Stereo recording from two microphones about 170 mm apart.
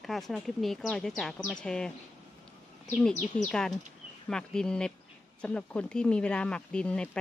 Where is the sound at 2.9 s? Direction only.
10° left (ahead or behind).